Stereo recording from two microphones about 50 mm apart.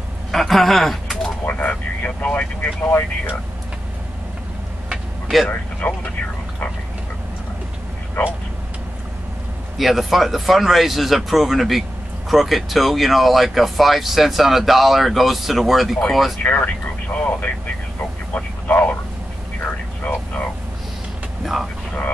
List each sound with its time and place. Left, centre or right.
0.3 s speech: centre
1.4 s speech: left
2.0 s speech: left
4.8 s vehicle: centre
5.5 s speech: left
8.2 s speech: left
9.8 s speech: centre
16.4 s speech: left
18.3 s radio: left